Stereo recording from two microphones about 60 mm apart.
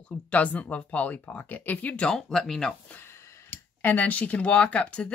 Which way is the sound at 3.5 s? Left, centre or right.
Left.